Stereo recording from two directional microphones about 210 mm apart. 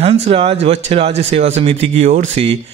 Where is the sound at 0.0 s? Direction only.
30° right (ahead or behind).